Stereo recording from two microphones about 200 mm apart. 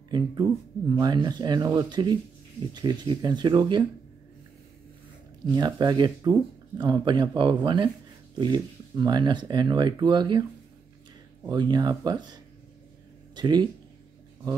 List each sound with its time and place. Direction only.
0.1 s speech: 20° right (ahead or behind)
5.5 s speech: 20° right (ahead or behind)
11.4 s speech: 20° right (ahead or behind)